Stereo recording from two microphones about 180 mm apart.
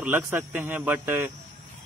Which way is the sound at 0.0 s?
10° right (ahead or behind).